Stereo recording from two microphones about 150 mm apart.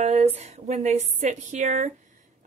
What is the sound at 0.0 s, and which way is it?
A woman's voice, 45° right (ahead or behind).